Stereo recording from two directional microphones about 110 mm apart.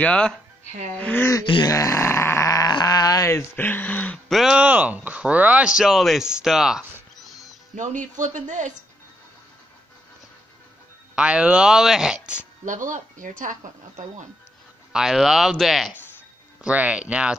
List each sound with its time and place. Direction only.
0.0 s speech: 10° left (ahead or behind)
1.4 s grunt: 45° left (ahead or behind)
1.7 s speech: 30° left (ahead or behind); by 4.2 s 15° left (ahead or behind)
4.3 s speech: 5° right (ahead or behind)
8.5 s speech: 90° right
11.1 s speech: 10° right (ahead or behind)
14.9 s speech: 5° right (ahead or behind)
16.6 s speech: 10° right (ahead or behind)